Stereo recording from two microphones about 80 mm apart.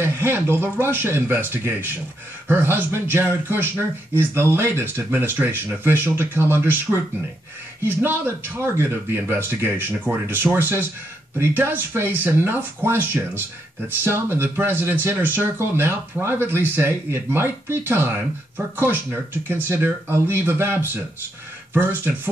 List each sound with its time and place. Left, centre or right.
0.0 s speech: right